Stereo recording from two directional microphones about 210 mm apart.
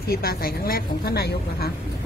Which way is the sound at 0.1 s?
45° left (ahead or behind).